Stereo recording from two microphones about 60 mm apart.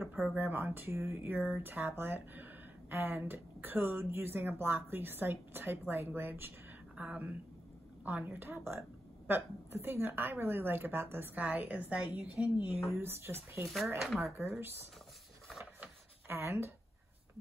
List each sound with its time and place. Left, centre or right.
0.0 s a sound: centre
0.4 s a woman's voice: right
0.9 s a woman's voice: right
7.0 s a woman's voice: right
12.9 s speech: right
13.9 s speech: centre
14.6 s speech: right
15.4 s a sound: centre
15.8 s a sound: right